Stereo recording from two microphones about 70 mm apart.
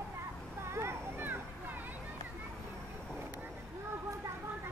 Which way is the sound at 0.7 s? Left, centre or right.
Right.